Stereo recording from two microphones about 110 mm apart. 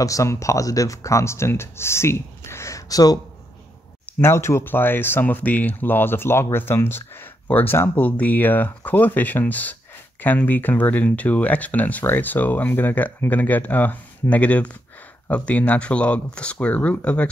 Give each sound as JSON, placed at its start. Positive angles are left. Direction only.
{"t": 0.0, "sound": "speech", "side_deg": 30}
{"t": 4.0, "sound": "speech", "side_deg": 20}